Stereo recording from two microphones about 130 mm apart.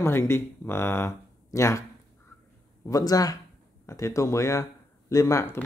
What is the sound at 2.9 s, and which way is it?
Speech, 30° left (ahead or behind).